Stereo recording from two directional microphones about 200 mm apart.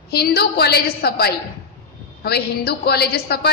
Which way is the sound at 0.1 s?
55° left (ahead or behind).